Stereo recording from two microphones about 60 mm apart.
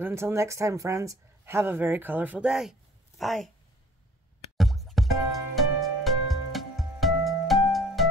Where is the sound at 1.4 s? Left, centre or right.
Right.